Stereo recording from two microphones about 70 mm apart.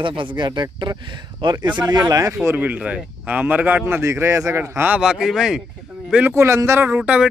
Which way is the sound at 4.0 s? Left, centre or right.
Right.